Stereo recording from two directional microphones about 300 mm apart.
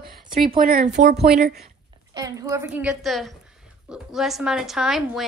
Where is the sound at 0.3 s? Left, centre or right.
Right.